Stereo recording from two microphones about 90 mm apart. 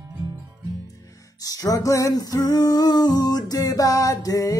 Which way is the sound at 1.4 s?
40° left (ahead or behind).